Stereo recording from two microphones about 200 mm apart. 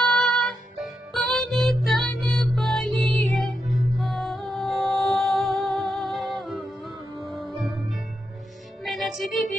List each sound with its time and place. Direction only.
0.0 s music: centre (ahead or behind)